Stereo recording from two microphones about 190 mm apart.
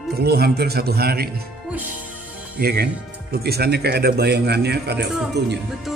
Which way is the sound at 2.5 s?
55° right (ahead or behind).